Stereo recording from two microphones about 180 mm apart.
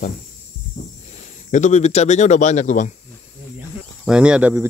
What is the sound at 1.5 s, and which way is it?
Speech, 40° left (ahead or behind).